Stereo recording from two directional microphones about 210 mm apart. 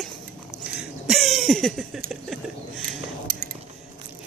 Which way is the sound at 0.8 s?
Centre (ahead or behind).